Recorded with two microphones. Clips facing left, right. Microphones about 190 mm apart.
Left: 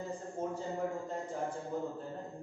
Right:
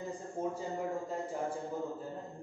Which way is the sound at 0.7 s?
Centre (ahead or behind).